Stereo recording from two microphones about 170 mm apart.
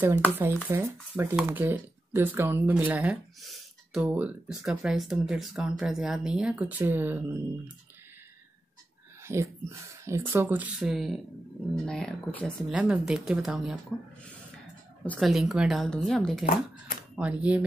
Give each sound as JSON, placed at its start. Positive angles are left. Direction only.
{"t": 0.7, "sound": "speech", "side_deg": -15}
{"t": 9.2, "sound": "speech", "side_deg": -15}
{"t": 12.7, "sound": "speech", "side_deg": -5}
{"t": 15.0, "sound": "speech", "side_deg": 0}
{"t": 16.4, "sound": "speech", "side_deg": 55}
{"t": 17.1, "sound": "speech", "side_deg": -10}